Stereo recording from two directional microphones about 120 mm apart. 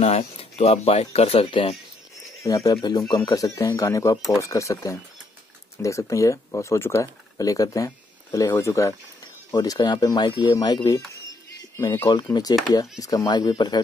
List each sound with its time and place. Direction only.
0.0 s speech: 55° left (ahead or behind)
2.4 s speech: 30° left (ahead or behind)